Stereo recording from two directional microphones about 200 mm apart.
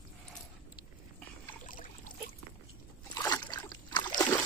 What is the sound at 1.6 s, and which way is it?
Boat, 40° left (ahead or behind).